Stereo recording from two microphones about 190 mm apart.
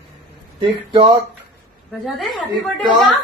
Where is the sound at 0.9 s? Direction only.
20° right (ahead or behind).